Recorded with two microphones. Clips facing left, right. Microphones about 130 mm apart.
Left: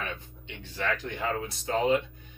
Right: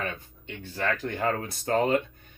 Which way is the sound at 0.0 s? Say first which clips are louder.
Right 3 dB; 45° right (ahead or behind).